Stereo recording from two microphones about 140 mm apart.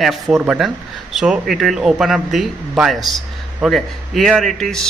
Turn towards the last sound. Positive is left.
turn(degrees=5)  # may be behind; listen again after turning